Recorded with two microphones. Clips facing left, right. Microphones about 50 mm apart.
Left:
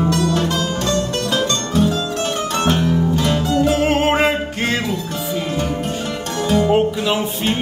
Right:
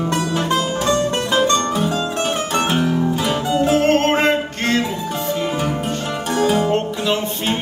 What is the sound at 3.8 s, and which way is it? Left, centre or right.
Music, centre.